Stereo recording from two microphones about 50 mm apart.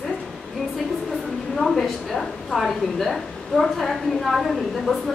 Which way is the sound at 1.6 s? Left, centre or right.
Centre.